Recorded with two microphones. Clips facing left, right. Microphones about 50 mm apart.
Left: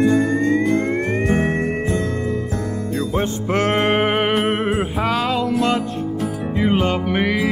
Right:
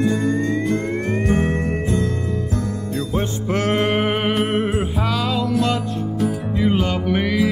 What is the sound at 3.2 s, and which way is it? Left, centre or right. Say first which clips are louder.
Music: left 2 dB; left.